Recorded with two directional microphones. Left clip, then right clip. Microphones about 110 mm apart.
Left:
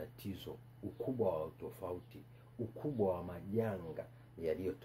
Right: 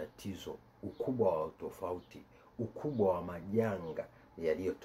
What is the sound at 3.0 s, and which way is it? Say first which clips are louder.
Speech: right 6 dB; 10° left (ahead or behind).